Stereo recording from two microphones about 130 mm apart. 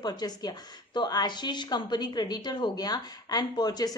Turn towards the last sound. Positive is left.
turn(degrees=30)  # may be behind; listen again after turning